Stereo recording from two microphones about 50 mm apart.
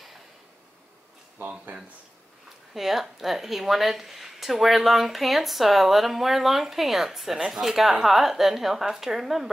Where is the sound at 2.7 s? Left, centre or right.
Centre.